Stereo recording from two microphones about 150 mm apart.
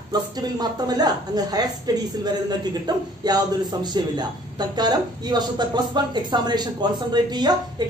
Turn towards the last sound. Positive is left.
turn(degrees=-30)  # may be behind; listen again after turning